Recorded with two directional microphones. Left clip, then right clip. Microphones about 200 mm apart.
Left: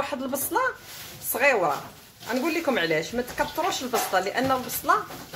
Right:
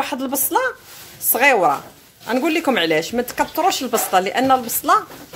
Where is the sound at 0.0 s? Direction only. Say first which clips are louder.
Right 6 dB; 45° right (ahead or behind).